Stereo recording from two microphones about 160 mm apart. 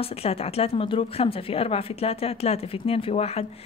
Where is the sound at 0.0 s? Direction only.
40° left (ahead or behind).